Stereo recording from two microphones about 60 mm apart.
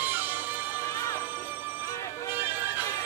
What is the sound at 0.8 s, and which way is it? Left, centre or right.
Music, left.